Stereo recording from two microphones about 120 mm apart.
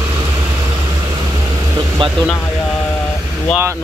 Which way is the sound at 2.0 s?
45° right (ahead or behind).